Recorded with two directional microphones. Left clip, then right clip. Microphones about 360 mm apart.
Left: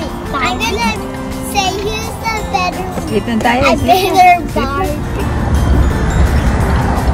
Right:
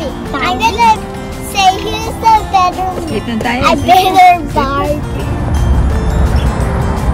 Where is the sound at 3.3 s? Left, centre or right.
Centre.